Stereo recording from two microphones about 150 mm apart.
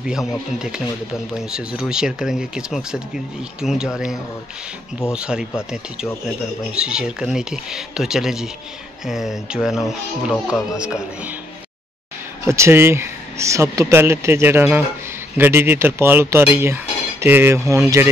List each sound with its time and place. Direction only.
0.0 s speech: 5° right (ahead or behind)
12.4 s speech: 20° right (ahead or behind)